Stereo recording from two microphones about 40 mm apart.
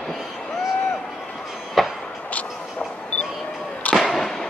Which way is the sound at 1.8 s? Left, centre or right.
Centre.